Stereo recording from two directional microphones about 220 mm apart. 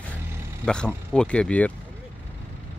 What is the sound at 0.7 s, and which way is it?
Speech, 5° left (ahead or behind).